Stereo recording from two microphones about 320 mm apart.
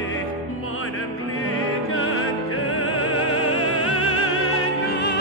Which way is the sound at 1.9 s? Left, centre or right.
Left.